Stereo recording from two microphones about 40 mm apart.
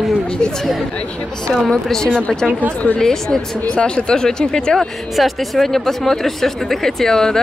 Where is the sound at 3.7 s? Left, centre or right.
Left.